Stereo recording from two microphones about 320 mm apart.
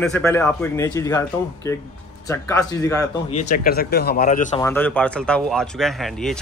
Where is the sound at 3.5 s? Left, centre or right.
Left.